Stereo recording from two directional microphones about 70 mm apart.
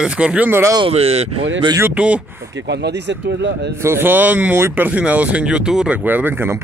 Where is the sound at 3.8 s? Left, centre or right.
Right; by 5.9 s centre.